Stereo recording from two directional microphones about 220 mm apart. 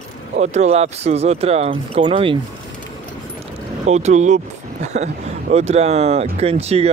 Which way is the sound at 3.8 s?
30° right (ahead or behind).